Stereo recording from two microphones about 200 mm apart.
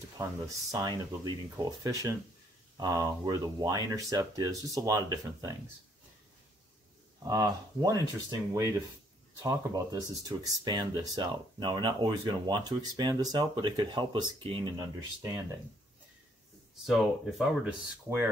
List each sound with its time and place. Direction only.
0.2 s speech: 15° right (ahead or behind)
7.2 s speech: 20° right (ahead or behind)
16.8 s speech: centre (ahead or behind)